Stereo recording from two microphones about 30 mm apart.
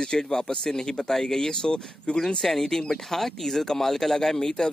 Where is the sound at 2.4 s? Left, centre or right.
Centre.